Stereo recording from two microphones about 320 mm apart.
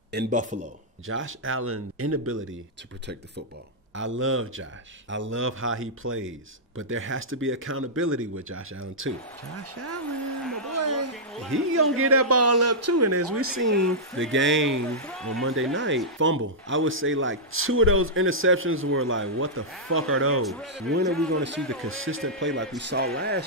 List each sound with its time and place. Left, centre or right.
0.1 s a man's voice: right
1.0 s a man's voice: right
3.9 s a man's voice: right
10.7 s a sound: right
11.5 s a man's voice: right
14.9 s speech: centre
15.4 s a man's voice: right
20.4 s speech: centre
21.3 s a man's voice: right